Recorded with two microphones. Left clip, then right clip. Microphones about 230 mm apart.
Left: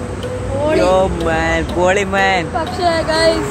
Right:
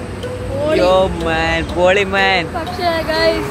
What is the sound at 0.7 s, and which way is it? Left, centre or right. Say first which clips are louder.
Speech: right 1 dB; centre.